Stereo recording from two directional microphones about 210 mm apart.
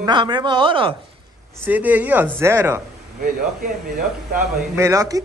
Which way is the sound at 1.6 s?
5° right (ahead or behind).